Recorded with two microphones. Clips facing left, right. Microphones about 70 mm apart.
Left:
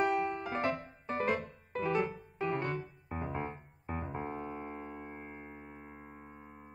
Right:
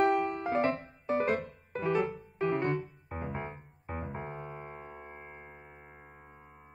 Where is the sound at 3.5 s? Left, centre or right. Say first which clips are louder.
Even; centre.